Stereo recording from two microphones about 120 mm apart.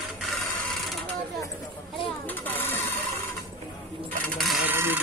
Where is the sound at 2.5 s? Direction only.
15° left (ahead or behind).